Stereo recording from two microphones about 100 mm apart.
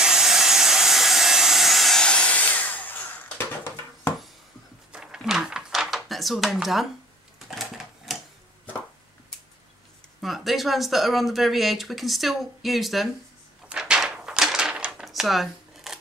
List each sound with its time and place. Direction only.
0.0 s wood: 5° right (ahead or behind); by 4.1 s 20° left (ahead or behind)
4.9 s a sound: 5° right (ahead or behind)
7.3 s typewriter: 5° right (ahead or behind)
10.2 s speech: centre (ahead or behind)
13.7 s drawer open or close: 10° right (ahead or behind)